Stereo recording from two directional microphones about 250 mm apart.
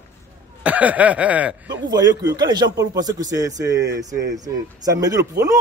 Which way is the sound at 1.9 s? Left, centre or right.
Centre.